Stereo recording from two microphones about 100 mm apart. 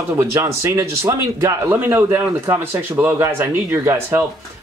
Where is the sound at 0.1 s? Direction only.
30° right (ahead or behind).